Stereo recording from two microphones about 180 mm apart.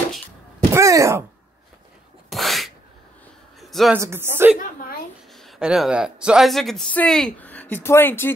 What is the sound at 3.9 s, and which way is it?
Speech, 15° right (ahead or behind).